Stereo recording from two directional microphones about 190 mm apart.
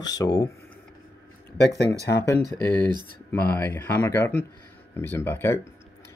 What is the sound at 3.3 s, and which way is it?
Speech, 10° left (ahead or behind).